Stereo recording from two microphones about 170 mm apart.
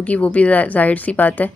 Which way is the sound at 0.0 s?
5° left (ahead or behind).